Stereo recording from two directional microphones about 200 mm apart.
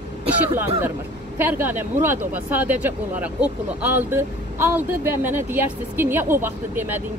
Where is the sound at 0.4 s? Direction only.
10° right (ahead or behind).